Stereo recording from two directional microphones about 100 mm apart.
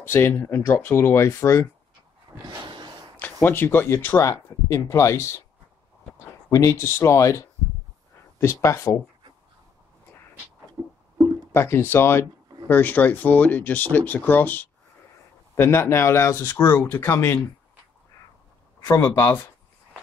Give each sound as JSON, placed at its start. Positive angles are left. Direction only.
{"t": 0.0, "sound": "speech", "side_deg": 20}
{"t": 2.6, "sound": "a sound", "side_deg": -50}
{"t": 3.2, "sound": "speech", "side_deg": 20}
{"t": 6.5, "sound": "speech", "side_deg": 30}
{"t": 10.8, "sound": "music", "side_deg": -30}
{"t": 11.5, "sound": "speech", "side_deg": 25}
{"t": 19.1, "sound": "speech", "side_deg": 25}